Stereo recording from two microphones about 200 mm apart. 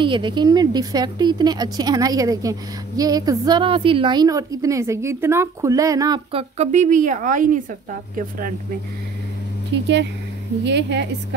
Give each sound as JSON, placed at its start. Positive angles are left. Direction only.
{"t": 0.0, "sound": "a woman's voice", "side_deg": -25}
{"t": 6.6, "sound": "a woman's voice", "side_deg": -35}
{"t": 9.7, "sound": "a woman's voice", "side_deg": -60}